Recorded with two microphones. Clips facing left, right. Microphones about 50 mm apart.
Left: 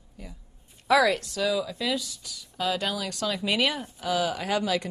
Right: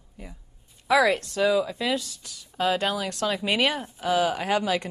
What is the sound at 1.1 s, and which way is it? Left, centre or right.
Speech, right.